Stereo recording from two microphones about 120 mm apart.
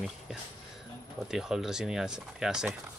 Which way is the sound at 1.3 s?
5° right (ahead or behind).